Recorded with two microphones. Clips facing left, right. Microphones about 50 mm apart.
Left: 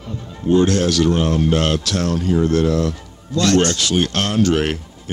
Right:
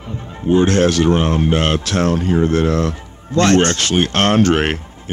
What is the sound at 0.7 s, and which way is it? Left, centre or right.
Speech, right.